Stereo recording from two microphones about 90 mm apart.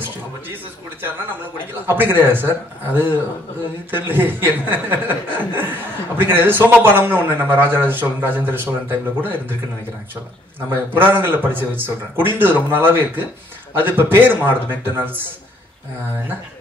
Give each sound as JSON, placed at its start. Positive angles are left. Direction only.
{"t": 1.9, "sound": "speech", "side_deg": -25}
{"t": 10.7, "sound": "speech", "side_deg": -25}